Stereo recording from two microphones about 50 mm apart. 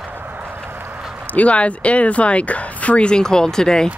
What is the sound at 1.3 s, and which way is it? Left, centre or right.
Speech, left.